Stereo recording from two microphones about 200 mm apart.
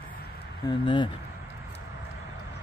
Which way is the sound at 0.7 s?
25° left (ahead or behind).